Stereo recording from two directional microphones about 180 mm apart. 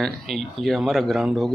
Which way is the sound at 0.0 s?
Centre (ahead or behind).